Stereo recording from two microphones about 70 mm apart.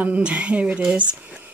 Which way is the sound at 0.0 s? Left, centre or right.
Right.